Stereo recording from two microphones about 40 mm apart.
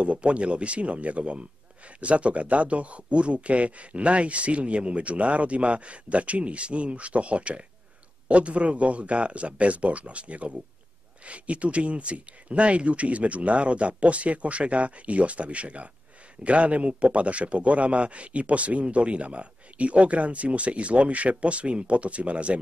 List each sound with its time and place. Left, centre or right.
0.0 s a man's voice: right